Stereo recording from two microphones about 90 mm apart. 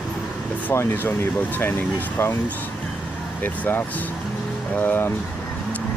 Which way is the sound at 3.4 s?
20° left (ahead or behind).